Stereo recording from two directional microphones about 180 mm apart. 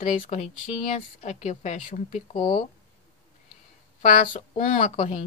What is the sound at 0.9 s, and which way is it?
Speech, 40° left (ahead or behind).